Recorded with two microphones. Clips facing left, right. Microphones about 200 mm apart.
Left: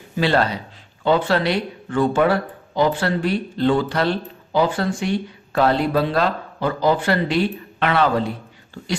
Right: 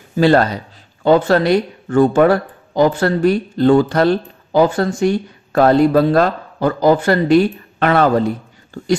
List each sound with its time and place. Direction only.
0.2 s speech: 45° right (ahead or behind)